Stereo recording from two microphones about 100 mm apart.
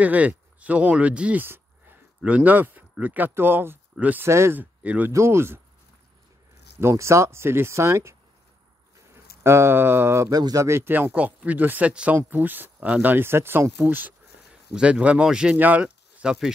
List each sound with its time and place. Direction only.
0.0 s speech: 15° right (ahead or behind)
4.8 s speech: 15° right (ahead or behind)
5.1 s speech: 25° right (ahead or behind)
6.8 s speech: 25° right (ahead or behind)
10.3 s speech: 40° right (ahead or behind); by 16.5 s 5° right (ahead or behind)